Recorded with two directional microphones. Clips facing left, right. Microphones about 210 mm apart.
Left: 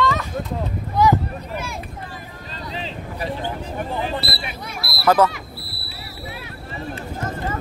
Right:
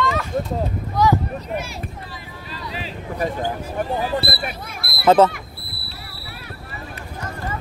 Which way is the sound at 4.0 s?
50° right (ahead or behind).